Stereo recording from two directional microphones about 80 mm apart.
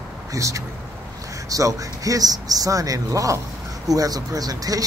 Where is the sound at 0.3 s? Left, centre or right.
Right.